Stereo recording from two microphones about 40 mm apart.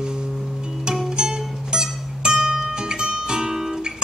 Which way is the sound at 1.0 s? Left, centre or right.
Centre.